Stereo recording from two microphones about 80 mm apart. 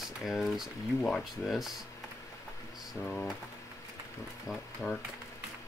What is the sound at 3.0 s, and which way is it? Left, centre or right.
Speech, centre.